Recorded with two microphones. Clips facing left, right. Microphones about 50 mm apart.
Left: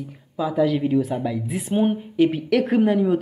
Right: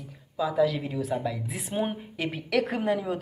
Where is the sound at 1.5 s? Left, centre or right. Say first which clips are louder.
Left 12 dB; centre.